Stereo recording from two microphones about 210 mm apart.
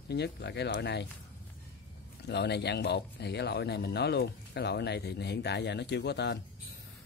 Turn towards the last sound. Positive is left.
turn(degrees=55)  # may be behind; listen again after turning